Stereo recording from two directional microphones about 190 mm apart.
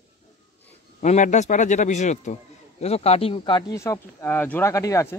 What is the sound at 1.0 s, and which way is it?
Speech, 40° left (ahead or behind).